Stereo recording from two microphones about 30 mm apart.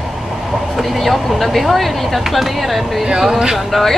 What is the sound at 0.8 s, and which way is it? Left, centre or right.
Speech, centre.